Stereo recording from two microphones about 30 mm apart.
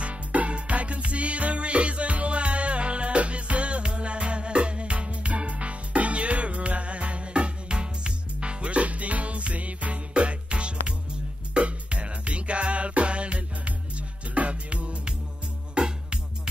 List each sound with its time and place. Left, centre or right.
0.0 s music: right